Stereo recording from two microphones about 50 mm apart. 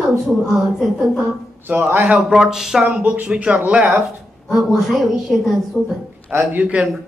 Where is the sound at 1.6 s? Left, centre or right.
Right.